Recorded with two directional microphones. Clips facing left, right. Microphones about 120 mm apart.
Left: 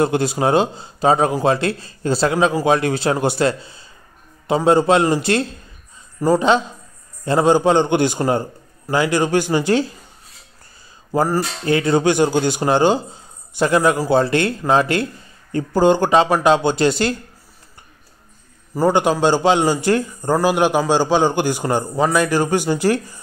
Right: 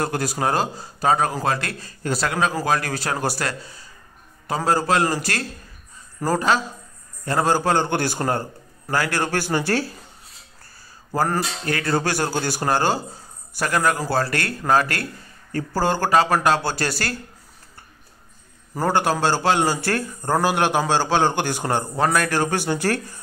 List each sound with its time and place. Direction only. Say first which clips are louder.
0.0 s a man's voice: left 6 dB; 25° left (ahead or behind)
11.1 s a sound: left 4 dB; 10° left (ahead or behind)
11.6 s speech: left 9 dB; 20° left (ahead or behind)
18.8 s a man's voice: left 5 dB; 15° left (ahead or behind)